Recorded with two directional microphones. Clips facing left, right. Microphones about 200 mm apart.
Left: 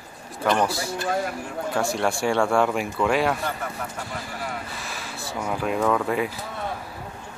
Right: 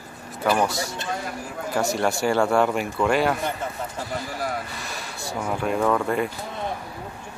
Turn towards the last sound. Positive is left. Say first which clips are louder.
# right 1 dB
turn(degrees=0)  # may be behind; listen again after turning